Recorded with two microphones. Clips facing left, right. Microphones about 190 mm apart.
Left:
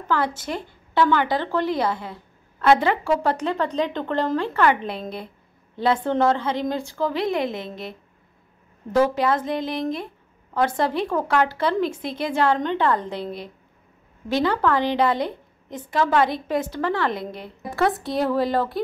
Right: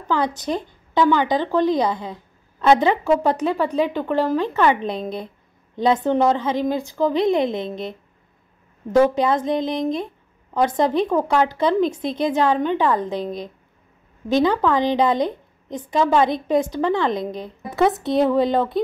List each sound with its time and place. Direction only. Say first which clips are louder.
0.0 s speech: right 2 dB; 15° right (ahead or behind)
6.0 s speech: right 2 dB; 15° right (ahead or behind)
8.9 s a woman's voice: right 3 dB; 20° right (ahead or behind)